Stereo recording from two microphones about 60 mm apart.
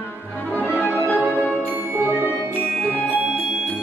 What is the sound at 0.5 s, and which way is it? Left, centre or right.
Music, left.